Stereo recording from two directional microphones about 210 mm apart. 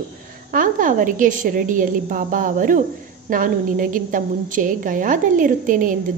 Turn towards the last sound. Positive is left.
turn(degrees=-40)  # may be behind; listen again after turning